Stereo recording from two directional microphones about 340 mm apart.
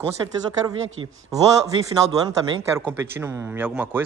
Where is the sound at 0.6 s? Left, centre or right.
Centre.